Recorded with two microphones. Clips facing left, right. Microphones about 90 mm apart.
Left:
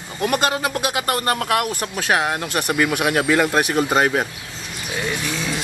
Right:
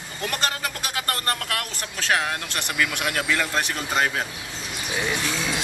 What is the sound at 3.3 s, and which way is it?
Speech, 25° left (ahead or behind).